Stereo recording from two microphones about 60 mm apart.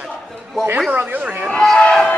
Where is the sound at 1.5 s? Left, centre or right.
Centre.